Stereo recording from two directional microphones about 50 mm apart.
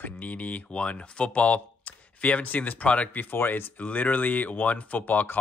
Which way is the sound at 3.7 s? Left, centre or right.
Left.